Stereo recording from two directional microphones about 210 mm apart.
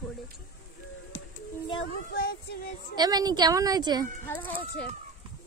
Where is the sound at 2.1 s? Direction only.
45° left (ahead or behind).